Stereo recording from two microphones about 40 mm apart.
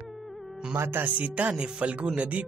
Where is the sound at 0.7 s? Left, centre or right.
Right.